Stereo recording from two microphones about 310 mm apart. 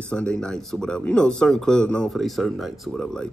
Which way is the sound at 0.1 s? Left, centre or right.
Centre.